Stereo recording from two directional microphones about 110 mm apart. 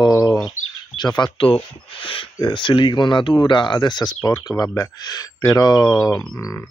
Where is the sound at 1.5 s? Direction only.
55° left (ahead or behind).